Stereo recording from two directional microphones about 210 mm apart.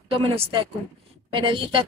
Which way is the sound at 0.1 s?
30° right (ahead or behind).